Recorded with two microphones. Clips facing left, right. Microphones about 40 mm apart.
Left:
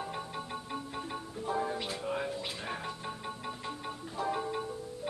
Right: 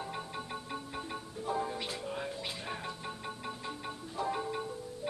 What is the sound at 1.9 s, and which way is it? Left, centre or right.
Music, left.